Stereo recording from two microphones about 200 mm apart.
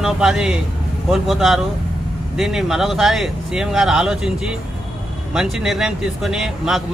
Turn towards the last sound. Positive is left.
turn(degrees=0)  # may be behind; listen again after turning